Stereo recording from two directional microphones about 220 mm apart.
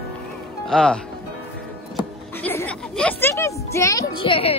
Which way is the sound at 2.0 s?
5° left (ahead or behind).